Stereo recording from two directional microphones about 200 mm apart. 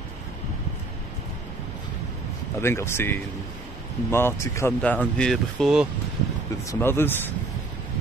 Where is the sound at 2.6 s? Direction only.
10° left (ahead or behind).